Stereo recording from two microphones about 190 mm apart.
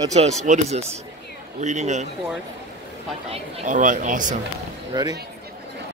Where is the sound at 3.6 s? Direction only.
45° right (ahead or behind).